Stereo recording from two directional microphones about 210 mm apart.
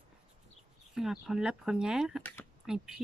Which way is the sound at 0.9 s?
Centre (ahead or behind).